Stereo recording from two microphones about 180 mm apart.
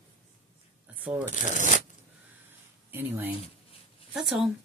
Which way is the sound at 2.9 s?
10° right (ahead or behind).